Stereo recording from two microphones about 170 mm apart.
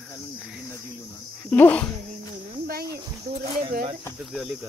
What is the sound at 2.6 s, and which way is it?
Cricket, 65° right (ahead or behind).